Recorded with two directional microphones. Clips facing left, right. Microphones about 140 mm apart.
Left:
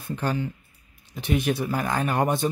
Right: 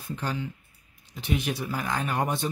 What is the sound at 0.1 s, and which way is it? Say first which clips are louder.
Speech: left 5 dB; 50° left (ahead or behind).